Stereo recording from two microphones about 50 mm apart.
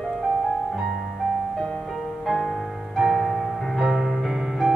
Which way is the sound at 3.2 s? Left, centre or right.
Centre.